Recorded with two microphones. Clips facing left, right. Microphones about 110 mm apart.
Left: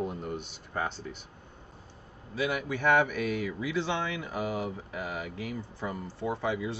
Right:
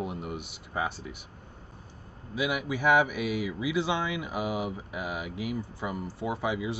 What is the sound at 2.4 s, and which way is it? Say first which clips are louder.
Speech: right 1 dB; 10° right (ahead or behind).